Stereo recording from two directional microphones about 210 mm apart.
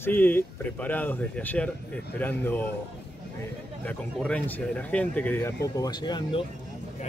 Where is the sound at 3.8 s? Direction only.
5° left (ahead or behind); by 6.4 s 20° left (ahead or behind).